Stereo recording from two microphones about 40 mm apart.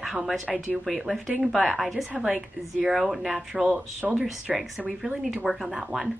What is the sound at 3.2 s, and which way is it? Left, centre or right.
Speech, centre.